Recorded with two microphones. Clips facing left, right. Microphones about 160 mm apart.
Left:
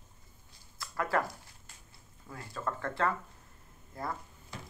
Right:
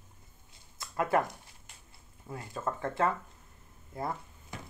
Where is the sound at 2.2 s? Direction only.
20° right (ahead or behind).